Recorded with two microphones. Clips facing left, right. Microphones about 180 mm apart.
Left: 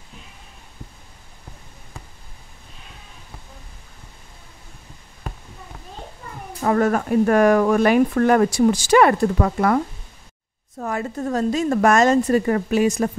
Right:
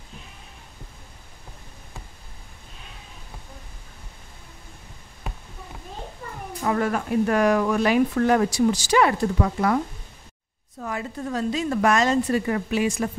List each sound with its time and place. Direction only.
6.6 s speech: 45° left (ahead or behind)
10.8 s speech: 45° left (ahead or behind)